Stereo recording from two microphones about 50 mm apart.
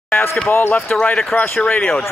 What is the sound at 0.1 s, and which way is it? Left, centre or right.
Speech, left.